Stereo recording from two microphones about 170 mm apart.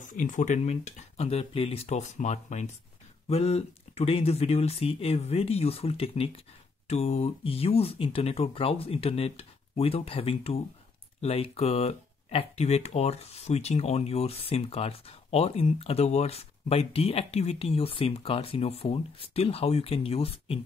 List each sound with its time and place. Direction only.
0.0 s speech: 50° left (ahead or behind)